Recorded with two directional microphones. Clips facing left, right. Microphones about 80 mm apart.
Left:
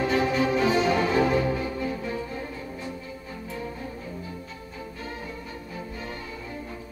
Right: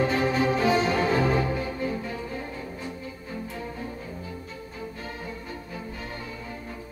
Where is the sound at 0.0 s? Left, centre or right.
Right.